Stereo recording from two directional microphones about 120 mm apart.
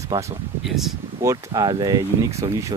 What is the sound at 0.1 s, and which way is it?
Speech, 30° right (ahead or behind).